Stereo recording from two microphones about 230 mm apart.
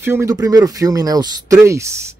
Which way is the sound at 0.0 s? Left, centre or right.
Centre.